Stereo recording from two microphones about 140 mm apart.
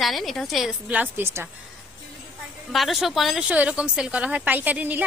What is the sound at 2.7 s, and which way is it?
A woman's voice, centre (ahead or behind).